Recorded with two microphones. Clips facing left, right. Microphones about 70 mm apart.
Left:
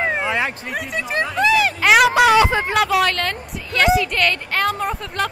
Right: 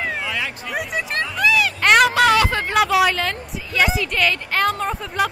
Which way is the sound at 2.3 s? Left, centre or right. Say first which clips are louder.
Left 3 dB; centre.